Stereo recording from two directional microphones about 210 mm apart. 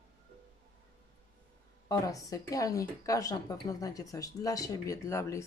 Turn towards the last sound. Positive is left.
turn(degrees=15)  # may be behind; listen again after turning